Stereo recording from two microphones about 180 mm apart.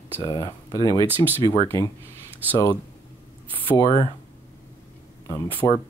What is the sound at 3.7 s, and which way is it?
Speech, 20° left (ahead or behind).